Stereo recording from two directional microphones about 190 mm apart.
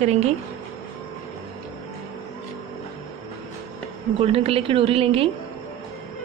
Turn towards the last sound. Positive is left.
turn(degrees=-30)  # may be behind; listen again after turning